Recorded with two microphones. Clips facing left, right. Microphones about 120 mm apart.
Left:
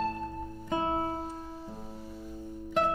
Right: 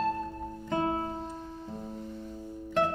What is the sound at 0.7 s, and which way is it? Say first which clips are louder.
Music: right 1 dB; 15° left (ahead or behind).